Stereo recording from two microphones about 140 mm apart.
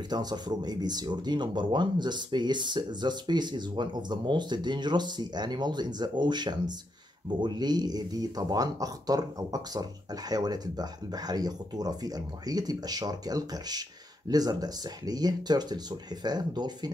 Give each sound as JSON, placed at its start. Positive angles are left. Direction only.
{"t": 0.1, "sound": "speech", "side_deg": -30}